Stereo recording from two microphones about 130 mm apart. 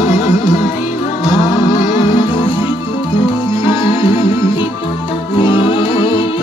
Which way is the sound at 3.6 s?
40° left (ahead or behind).